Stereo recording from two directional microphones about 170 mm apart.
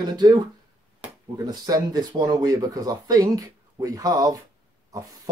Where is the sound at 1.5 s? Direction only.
20° right (ahead or behind).